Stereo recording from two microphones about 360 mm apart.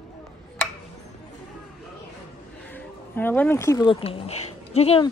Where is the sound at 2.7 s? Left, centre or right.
Centre.